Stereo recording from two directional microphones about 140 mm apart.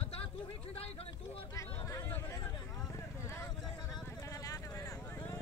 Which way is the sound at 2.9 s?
20° left (ahead or behind).